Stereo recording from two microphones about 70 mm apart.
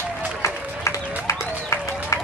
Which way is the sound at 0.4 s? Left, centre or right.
Left.